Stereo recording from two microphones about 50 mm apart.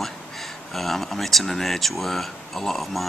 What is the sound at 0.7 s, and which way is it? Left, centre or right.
Speech, centre.